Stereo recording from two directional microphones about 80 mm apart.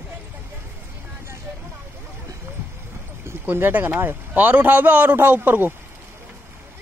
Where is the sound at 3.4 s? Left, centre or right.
Right.